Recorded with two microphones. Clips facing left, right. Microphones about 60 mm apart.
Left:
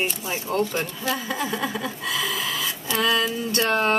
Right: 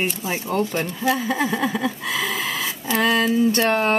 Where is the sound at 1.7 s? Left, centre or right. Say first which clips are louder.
Right 4 dB; right.